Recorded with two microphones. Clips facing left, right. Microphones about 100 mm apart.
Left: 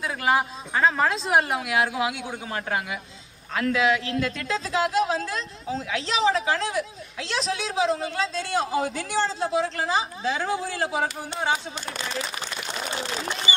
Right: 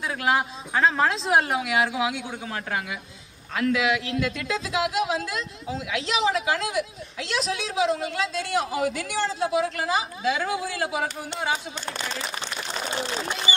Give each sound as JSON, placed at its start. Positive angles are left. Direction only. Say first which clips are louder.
{"t": 0.0, "sound": "speech", "louder": "left 1 dB", "side_deg": 0}
{"t": 3.5, "sound": "speech", "louder": "left 1 dB", "side_deg": 35}